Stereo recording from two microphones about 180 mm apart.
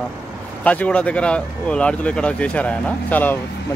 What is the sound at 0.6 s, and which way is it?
Speech, 10° left (ahead or behind).